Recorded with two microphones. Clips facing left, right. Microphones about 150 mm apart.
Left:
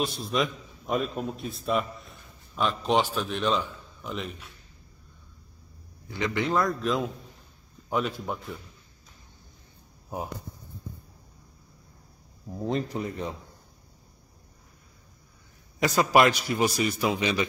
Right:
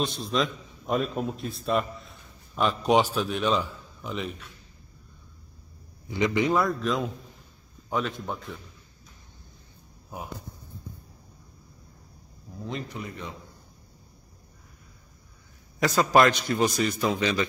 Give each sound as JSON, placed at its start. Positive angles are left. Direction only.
{"t": 0.0, "sound": "a man's voice", "side_deg": 0}
{"t": 6.0, "sound": "a man's voice", "side_deg": -20}
{"t": 6.7, "sound": "a man's voice", "side_deg": 0}
{"t": 10.0, "sound": "speech", "side_deg": 30}
{"t": 12.5, "sound": "speech", "side_deg": 40}
{"t": 15.8, "sound": "a man's voice", "side_deg": 10}